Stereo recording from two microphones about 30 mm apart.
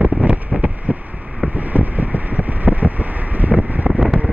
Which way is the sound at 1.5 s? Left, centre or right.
Right.